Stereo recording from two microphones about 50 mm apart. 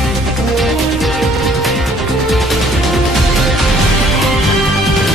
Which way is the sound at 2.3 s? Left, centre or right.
Centre.